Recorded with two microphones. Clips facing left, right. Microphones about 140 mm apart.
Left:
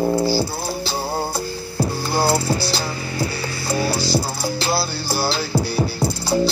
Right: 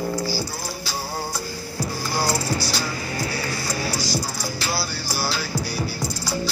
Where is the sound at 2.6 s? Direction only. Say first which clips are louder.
Left 3 dB; 30° left (ahead or behind).